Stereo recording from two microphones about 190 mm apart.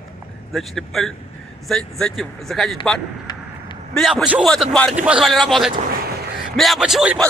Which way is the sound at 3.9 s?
Centre (ahead or behind).